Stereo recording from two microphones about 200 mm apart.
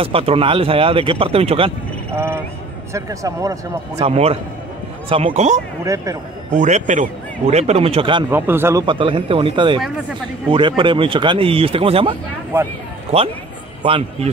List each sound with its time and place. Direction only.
0.0 s speech: 30° right (ahead or behind)
2.1 s speech: 10° right (ahead or behind)
4.0 s a man's voice: 30° right (ahead or behind)
8.3 s speech: 10° right (ahead or behind)
8.8 s a man's voice: 25° right (ahead or behind)